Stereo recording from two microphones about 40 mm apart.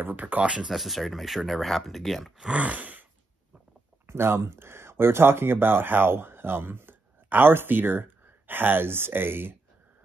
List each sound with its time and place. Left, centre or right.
0.0 s speech: right
0.4 s speech: right
0.7 s speech: centre
2.5 s a sound: right
4.1 s speech: right